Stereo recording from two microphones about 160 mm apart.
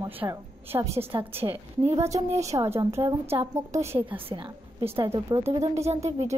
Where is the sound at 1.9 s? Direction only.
20° right (ahead or behind).